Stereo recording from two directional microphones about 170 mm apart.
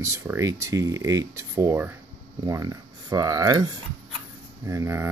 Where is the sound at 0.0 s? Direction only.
15° right (ahead or behind).